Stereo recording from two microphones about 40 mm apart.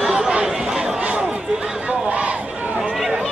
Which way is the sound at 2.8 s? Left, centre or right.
Centre.